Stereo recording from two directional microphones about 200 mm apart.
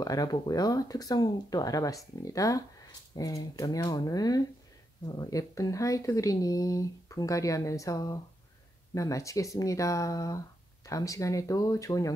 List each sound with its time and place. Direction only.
0.0 s speech: 20° left (ahead or behind)